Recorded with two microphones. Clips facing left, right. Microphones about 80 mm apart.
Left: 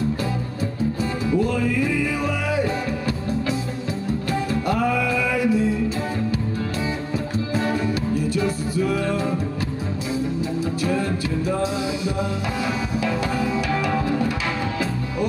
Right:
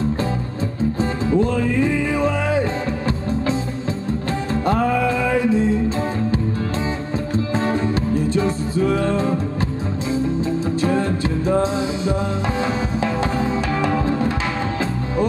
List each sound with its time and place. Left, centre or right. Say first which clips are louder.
1.3 s music: right 3 dB; right
7.3 s music: right 3 dB; right
10.8 s music: right 4 dB; right